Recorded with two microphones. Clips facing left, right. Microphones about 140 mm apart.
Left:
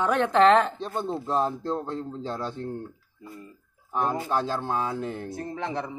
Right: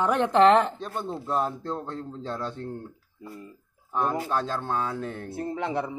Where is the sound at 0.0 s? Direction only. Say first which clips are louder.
Even; 10° right (ahead or behind).